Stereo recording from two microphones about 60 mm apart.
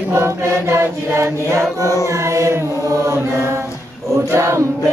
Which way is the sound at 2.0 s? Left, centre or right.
Right.